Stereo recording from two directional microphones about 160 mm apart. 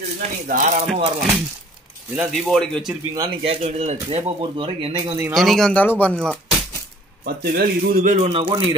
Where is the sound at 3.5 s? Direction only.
40° right (ahead or behind); by 5.3 s 20° right (ahead or behind).